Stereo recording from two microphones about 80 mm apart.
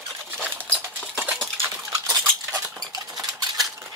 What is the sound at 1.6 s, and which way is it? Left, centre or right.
Dog, right.